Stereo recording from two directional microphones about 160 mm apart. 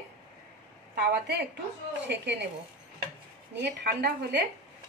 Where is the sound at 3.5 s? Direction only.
90° right.